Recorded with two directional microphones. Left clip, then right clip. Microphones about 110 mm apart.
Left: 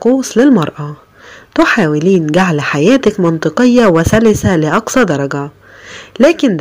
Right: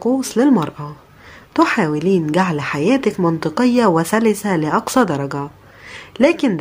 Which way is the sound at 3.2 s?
25° left (ahead or behind).